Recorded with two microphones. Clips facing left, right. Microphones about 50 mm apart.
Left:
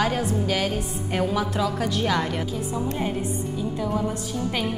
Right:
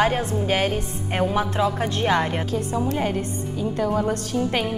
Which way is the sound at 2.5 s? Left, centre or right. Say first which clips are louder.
Right 4 dB; right.